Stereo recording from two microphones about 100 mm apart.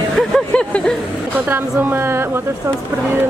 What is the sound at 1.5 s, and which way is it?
Speech, 20° right (ahead or behind).